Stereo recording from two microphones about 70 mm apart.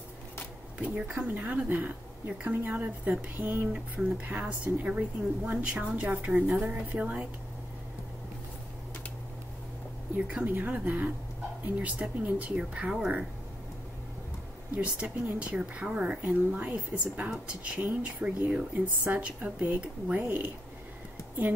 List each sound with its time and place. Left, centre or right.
0.7 s a woman's voice: centre
10.1 s a woman's voice: right
14.8 s a woman's voice: centre